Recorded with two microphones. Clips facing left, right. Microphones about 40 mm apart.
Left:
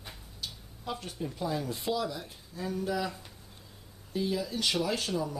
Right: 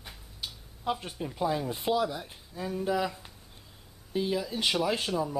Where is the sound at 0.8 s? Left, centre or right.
Right.